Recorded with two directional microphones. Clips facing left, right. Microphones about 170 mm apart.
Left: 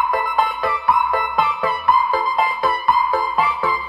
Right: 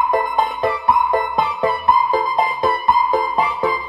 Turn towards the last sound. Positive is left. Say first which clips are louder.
# right 2 dB
turn(degrees=-20)  # may be behind; listen again after turning